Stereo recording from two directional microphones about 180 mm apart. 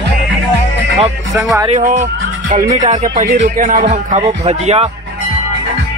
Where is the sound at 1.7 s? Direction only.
45° right (ahead or behind).